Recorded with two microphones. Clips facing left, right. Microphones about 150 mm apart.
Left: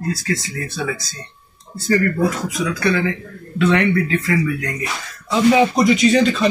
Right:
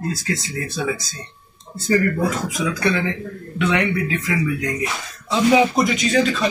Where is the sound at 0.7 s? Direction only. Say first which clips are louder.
Right 1 dB; 20° right (ahead or behind).